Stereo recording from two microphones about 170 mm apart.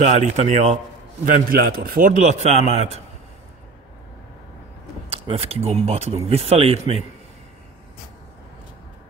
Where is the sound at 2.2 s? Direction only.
40° right (ahead or behind).